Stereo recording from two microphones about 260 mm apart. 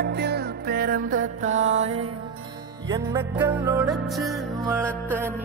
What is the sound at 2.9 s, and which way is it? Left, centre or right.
Music, centre.